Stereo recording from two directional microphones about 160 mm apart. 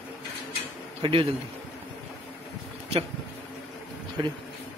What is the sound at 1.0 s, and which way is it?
Speech, 35° right (ahead or behind).